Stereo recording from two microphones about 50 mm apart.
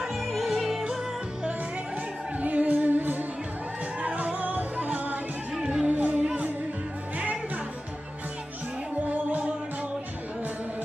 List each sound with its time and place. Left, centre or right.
0.0 s yodeling: centre
2.4 s music: right
4.0 s music: right
5.6 s music: centre
5.9 s music: right
9.0 s music: right